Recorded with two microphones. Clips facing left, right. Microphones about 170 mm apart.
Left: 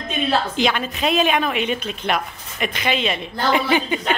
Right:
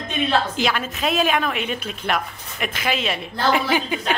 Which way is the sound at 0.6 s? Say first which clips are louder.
Left 2 dB; centre (ahead or behind).